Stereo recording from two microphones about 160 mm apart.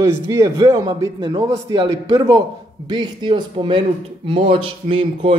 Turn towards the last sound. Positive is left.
turn(degrees=-35)  # may be behind; listen again after turning